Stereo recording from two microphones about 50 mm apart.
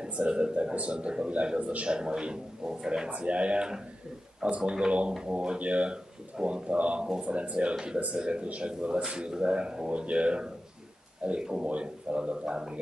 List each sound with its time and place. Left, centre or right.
0.0 s a man's voice: right
3.1 s a man's voice: right